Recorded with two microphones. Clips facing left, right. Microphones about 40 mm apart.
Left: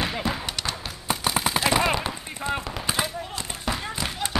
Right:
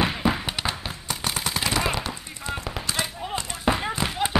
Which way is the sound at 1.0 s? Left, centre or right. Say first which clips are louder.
Left 5 dB; centre.